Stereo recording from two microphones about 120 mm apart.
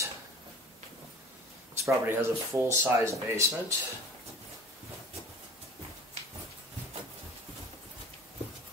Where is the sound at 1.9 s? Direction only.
20° right (ahead or behind).